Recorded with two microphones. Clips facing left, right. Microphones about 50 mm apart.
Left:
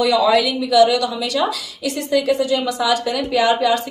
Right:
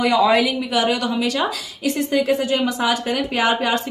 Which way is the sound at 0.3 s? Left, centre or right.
Right.